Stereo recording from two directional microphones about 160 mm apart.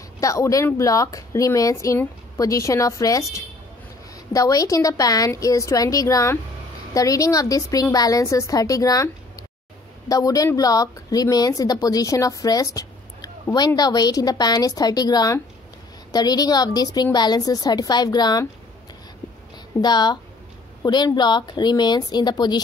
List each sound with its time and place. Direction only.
0.2 s speech: 20° left (ahead or behind)
19.8 s speech: 25° left (ahead or behind)